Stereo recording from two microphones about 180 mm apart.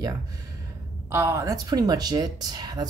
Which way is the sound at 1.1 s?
15° right (ahead or behind).